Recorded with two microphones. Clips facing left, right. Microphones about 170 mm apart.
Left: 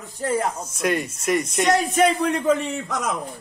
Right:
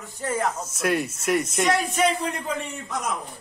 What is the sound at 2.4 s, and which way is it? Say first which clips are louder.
Speech: left 9 dB; 90° left.